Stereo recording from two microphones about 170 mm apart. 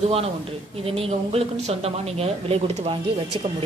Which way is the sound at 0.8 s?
35° right (ahead or behind).